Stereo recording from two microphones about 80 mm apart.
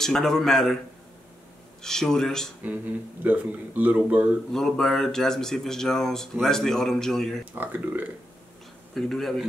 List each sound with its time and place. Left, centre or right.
0.0 s speech: centre
1.8 s speech: centre
3.3 s speech: right
4.5 s speech: centre
7.5 s speech: right
8.9 s speech: centre